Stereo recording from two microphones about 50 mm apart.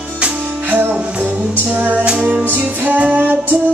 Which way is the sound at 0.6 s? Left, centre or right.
Right.